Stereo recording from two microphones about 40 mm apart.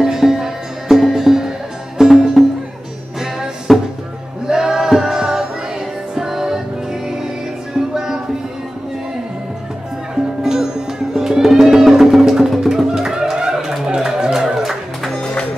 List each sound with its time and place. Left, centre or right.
0.0 s music: centre
3.7 s music: centre
4.5 s music: centre
10.4 s music: centre
15.1 s music: centre